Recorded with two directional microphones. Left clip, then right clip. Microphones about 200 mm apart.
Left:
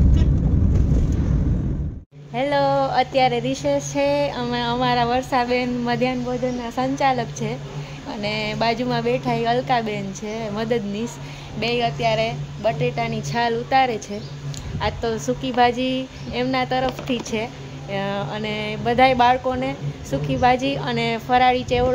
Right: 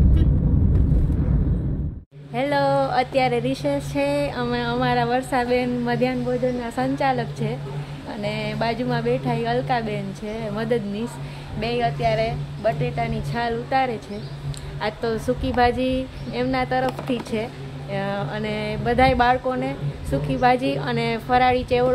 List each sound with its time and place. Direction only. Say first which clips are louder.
2.3 s speech: left 1 dB; centre (ahead or behind)
8.1 s a woman's voice: left 2 dB; 25° left (ahead or behind)
14.8 s speech: left 1 dB; 10° left (ahead or behind)